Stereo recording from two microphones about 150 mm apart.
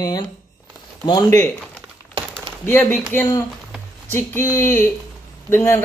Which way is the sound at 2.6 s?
15° left (ahead or behind).